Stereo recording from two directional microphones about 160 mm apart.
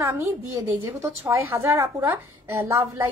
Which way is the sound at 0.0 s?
15° right (ahead or behind).